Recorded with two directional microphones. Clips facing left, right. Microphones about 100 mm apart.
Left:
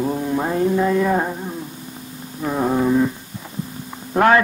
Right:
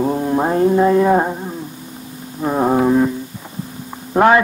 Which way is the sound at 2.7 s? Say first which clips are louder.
Right 2 dB; 55° right (ahead or behind).